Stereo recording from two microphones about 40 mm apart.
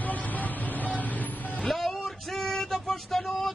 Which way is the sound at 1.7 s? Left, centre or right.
Centre.